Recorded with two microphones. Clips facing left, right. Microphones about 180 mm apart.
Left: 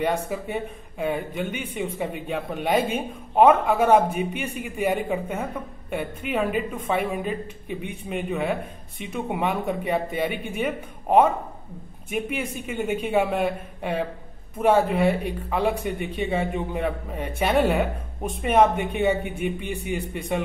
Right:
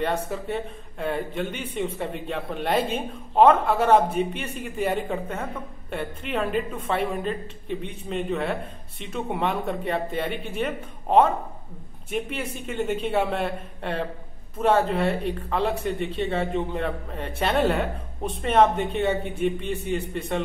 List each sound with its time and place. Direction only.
0.0 s a man's voice: 10° left (ahead or behind)